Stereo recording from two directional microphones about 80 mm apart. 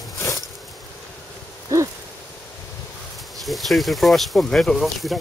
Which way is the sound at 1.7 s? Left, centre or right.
Right.